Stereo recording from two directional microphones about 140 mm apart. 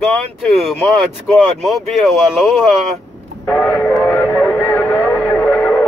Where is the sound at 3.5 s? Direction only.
10° left (ahead or behind).